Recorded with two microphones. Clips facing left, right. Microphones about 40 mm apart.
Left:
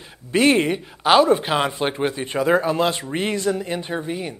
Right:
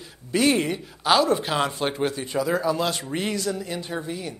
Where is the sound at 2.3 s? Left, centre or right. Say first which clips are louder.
Left 6 dB; left.